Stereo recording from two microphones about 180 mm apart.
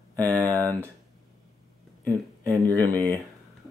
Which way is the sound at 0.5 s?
15° right (ahead or behind).